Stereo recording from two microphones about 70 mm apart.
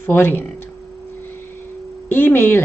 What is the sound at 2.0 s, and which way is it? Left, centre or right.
Speech, left.